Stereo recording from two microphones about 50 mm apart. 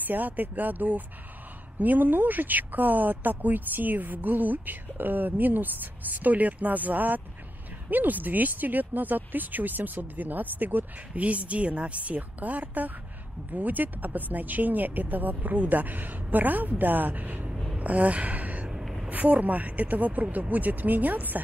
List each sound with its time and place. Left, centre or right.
0.0 s speech: right
11.2 s a woman's voice: right
17.7 s a sound: right
19.0 s speech: right